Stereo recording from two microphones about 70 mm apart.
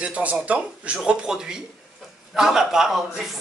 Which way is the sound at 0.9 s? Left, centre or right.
Centre.